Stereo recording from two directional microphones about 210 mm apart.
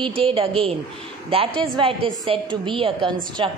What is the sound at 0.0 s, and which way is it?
A woman's voice, 25° right (ahead or behind).